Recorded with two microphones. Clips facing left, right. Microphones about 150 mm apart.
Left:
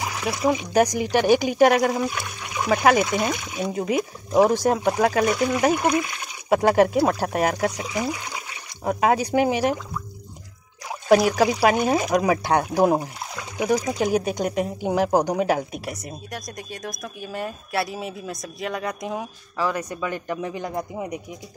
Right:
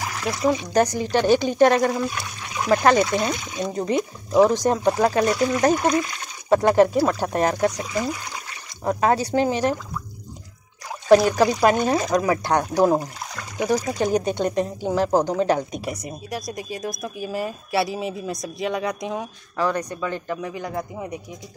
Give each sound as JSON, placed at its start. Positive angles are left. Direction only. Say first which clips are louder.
{"t": 0.0, "sound": "speech", "louder": "even", "side_deg": 15}
{"t": 11.1, "sound": "speech", "louder": "right 2 dB", "side_deg": 10}